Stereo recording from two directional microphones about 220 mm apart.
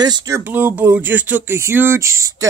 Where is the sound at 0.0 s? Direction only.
15° right (ahead or behind).